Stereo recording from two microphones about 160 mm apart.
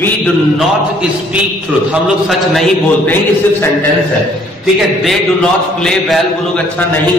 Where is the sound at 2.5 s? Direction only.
Centre (ahead or behind).